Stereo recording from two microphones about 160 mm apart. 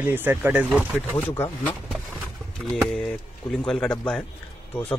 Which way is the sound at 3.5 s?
5° left (ahead or behind).